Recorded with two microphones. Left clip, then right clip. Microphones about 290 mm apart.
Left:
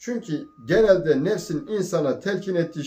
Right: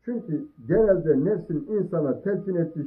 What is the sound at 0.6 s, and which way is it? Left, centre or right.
Speech, centre.